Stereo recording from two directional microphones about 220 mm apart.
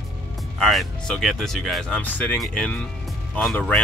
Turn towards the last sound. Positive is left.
turn(degrees=5)  # may be behind; listen again after turning